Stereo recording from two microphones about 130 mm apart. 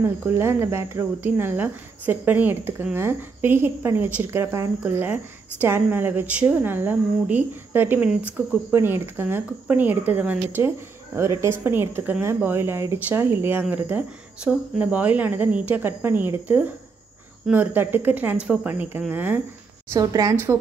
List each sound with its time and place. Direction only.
0.0 s speech: 20° right (ahead or behind)
19.9 s a woman's voice: 25° right (ahead or behind)